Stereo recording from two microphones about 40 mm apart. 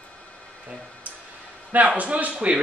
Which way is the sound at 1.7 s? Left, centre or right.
Right.